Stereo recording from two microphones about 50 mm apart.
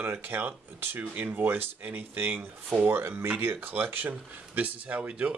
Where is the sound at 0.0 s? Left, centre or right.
Right.